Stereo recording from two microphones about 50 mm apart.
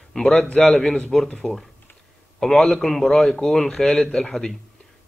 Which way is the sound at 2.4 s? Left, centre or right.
Centre.